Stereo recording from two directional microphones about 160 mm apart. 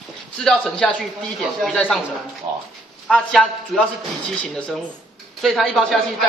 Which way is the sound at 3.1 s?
5° left (ahead or behind).